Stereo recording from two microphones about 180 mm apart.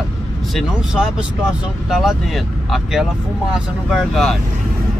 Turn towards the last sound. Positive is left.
turn(degrees=0)  # may be behind; listen again after turning